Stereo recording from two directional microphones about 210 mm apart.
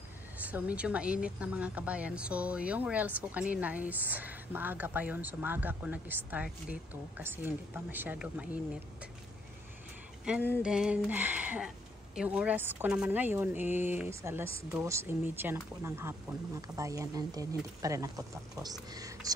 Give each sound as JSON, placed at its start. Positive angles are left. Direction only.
{"t": 0.4, "sound": "a woman's voice", "side_deg": -5}
{"t": 10.2, "sound": "a sound", "side_deg": -5}
{"t": 12.2, "sound": "a woman's voice", "side_deg": -5}